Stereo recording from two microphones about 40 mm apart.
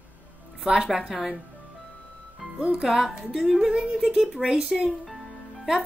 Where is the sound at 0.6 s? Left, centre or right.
Centre.